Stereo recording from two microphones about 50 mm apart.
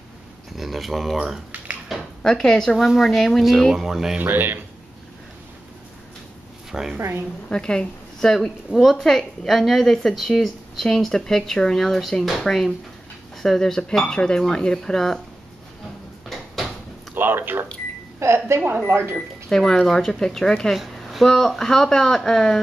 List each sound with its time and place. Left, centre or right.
0.6 s a woman's voice: centre
1.1 s speech: centre
1.9 s a sound: centre
2.2 s a woman's voice: centre
4.2 s speech: right
6.7 s speech: centre
7.0 s speech: right
7.4 s a woman's voice: centre
16.3 s a sound: centre
17.1 s speech: right
18.2 s speech: right
18.9 s speech: right
19.1 s speech: centre
20.7 s speech: centre